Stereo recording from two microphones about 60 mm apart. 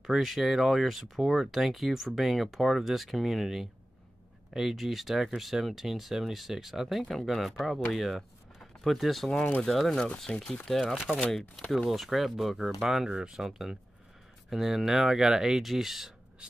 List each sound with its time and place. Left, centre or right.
0.0 s speech: centre
9.3 s speech: centre
9.7 s speech: centre
10.7 s speech: centre